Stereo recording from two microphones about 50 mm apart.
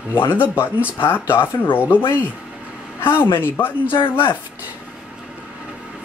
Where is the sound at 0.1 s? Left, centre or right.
Left.